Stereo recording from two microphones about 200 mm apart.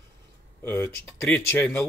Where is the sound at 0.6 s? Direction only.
10° left (ahead or behind).